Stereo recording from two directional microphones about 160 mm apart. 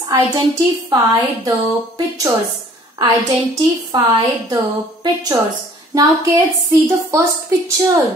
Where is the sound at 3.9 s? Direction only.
30° right (ahead or behind).